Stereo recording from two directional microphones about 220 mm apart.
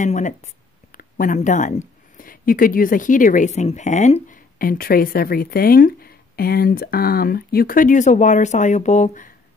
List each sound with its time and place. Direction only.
0.0 s speech: 35° left (ahead or behind)